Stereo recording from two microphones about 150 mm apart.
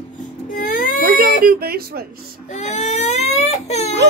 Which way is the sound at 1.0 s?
80° right.